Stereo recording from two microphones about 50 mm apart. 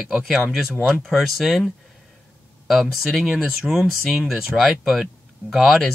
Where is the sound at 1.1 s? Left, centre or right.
Centre.